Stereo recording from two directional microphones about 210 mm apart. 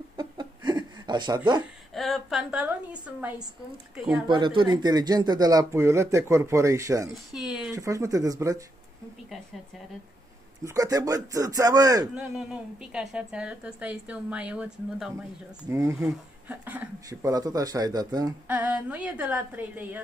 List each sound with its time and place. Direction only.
0.2 s chuckle: 20° right (ahead or behind)
2.0 s a woman's voice: centre (ahead or behind)
4.3 s speech: 25° right (ahead or behind)
7.3 s speech: 5° right (ahead or behind)
7.7 s speech: 15° right (ahead or behind)
10.6 s speech: 15° right (ahead or behind)
12.2 s a woman's voice: 5° right (ahead or behind)
18.5 s speech: 5° right (ahead or behind)